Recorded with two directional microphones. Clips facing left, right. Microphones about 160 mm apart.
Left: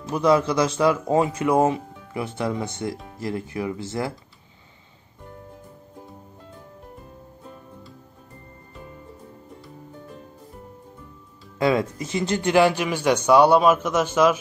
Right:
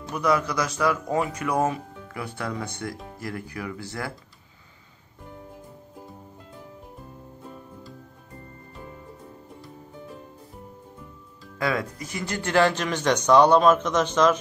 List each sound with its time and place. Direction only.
0.1 s speech: 25° left (ahead or behind)
11.5 s speech: 25° left (ahead or behind); by 14.3 s 10° left (ahead or behind)